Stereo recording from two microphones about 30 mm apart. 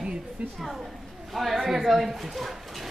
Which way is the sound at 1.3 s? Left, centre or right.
Centre.